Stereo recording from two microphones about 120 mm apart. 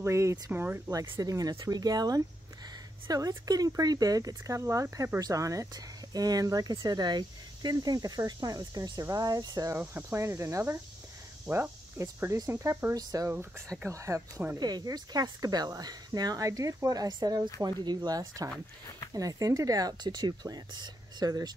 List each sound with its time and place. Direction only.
0.0 s speech: 25° right (ahead or behind)
1.0 s speech: 35° right (ahead or behind)
9.8 s speech: 15° right (ahead or behind)
12.0 s speech: 25° right (ahead or behind)
14.6 s speech: 35° right (ahead or behind)